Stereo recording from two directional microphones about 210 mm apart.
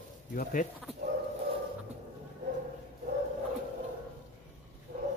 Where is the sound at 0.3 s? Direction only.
40° left (ahead or behind).